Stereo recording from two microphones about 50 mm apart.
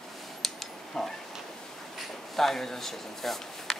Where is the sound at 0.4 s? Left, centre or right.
Centre.